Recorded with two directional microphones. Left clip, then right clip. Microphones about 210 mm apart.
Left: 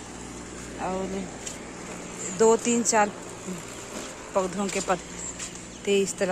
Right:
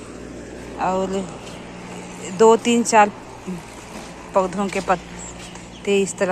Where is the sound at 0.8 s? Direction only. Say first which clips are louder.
Right 9 dB; centre (ahead or behind).